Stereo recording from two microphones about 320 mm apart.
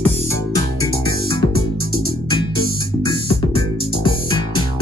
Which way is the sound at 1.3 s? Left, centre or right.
Right.